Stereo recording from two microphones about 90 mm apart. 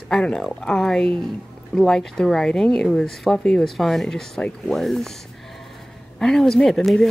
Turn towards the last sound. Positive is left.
turn(degrees=5)  # may be behind; listen again after turning